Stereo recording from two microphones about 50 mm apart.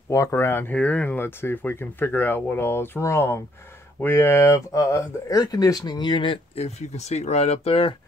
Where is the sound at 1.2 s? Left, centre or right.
Left.